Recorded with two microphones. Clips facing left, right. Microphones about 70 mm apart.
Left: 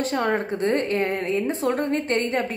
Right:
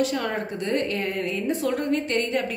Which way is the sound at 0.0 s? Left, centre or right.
Left.